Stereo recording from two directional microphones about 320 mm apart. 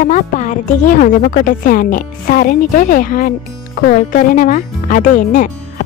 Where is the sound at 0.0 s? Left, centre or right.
Left.